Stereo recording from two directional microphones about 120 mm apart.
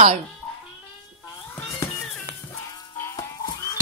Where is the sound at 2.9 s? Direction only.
25° left (ahead or behind).